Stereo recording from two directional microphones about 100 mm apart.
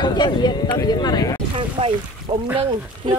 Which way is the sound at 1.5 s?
70° right (ahead or behind).